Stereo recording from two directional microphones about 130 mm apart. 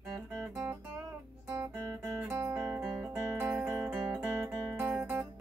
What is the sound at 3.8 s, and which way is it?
Music, 10° right (ahead or behind).